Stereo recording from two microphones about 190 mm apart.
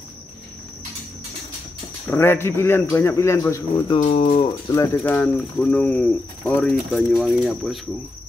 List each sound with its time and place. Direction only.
2.0 s speech: 10° left (ahead or behind)
3.9 s speech: 30° left (ahead or behind)
4.4 s speech: 20° left (ahead or behind)
5.0 s speech: 5° left (ahead or behind)